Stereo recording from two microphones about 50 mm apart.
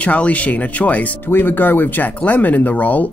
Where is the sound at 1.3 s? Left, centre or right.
Left.